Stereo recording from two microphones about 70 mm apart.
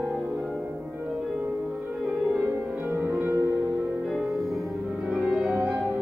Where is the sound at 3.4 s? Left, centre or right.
Right.